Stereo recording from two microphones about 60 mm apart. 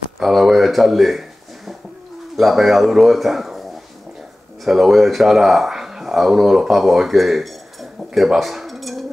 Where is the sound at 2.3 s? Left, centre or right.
Centre.